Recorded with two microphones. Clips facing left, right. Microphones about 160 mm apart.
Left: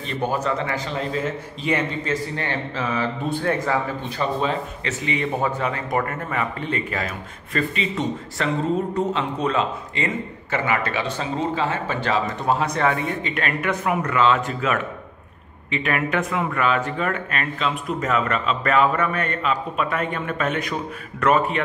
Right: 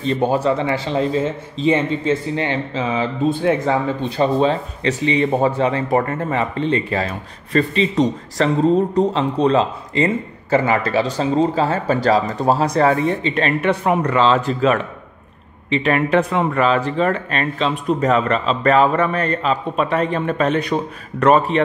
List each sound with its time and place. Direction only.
0.0 s a man's voice: 30° right (ahead or behind)
4.2 s speech: 30° right (ahead or behind)